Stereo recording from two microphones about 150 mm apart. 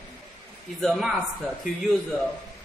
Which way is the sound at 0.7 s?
Centre (ahead or behind).